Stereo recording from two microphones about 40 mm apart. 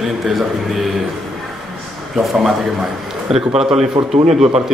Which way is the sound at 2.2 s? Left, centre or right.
Centre.